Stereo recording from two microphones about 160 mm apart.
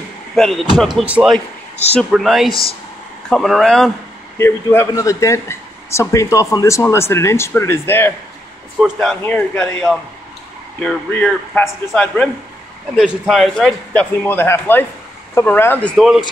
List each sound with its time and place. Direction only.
0.4 s a man's voice: centre (ahead or behind)
4.4 s speech: 15° left (ahead or behind)
9.2 s speech: 10° left (ahead or behind)
12.9 s a man's voice: 5° right (ahead or behind)